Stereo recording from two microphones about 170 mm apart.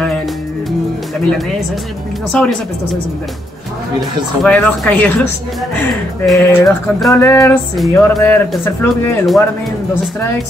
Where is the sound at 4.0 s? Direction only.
5° left (ahead or behind).